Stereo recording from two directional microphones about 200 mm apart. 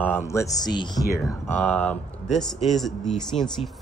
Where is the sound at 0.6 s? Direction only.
20° left (ahead or behind).